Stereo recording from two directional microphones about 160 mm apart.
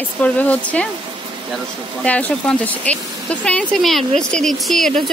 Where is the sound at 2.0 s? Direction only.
10° left (ahead or behind).